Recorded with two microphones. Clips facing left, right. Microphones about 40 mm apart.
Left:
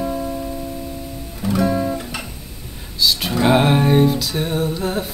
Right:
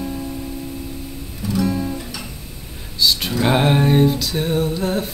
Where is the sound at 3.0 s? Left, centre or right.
Centre.